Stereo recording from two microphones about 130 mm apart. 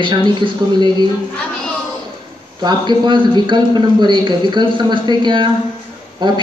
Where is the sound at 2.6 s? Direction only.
35° right (ahead or behind).